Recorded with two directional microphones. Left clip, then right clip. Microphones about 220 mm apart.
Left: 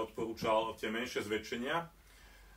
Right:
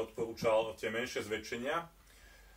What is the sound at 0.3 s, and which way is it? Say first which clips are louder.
Speech: right 1 dB; 5° left (ahead or behind).